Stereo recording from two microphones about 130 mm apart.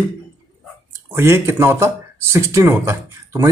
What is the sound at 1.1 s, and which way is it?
Speech, 20° right (ahead or behind).